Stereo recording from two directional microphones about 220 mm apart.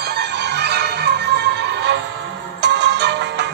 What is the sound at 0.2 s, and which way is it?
Music, 50° right (ahead or behind).